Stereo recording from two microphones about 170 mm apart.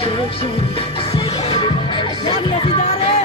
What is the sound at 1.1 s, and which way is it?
Music, 35° left (ahead or behind).